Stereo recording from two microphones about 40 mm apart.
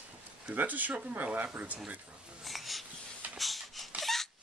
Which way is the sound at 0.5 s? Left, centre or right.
Right.